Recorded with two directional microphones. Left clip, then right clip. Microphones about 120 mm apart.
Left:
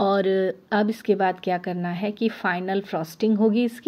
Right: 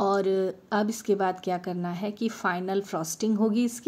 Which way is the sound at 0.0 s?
15° left (ahead or behind).